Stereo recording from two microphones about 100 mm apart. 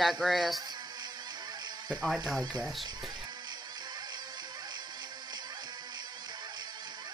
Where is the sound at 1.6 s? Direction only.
45° right (ahead or behind).